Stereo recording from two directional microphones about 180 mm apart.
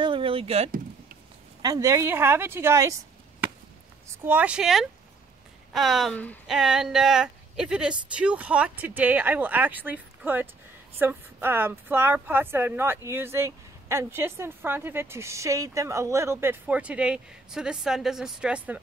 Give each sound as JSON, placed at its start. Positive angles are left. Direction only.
{"t": 0.0, "sound": "rowboat", "side_deg": -30}
{"t": 1.6, "sound": "a woman's voice", "side_deg": -20}